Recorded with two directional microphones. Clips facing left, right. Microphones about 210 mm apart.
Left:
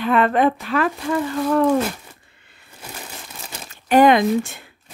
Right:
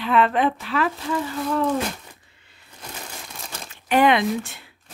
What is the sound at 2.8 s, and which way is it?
Crumpling, 10° left (ahead or behind).